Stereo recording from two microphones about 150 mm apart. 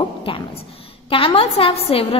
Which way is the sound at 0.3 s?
35° left (ahead or behind).